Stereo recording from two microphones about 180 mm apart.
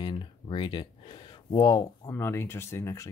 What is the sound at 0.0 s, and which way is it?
Speech, 25° left (ahead or behind).